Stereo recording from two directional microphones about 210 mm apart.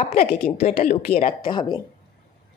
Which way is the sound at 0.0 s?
30° left (ahead or behind).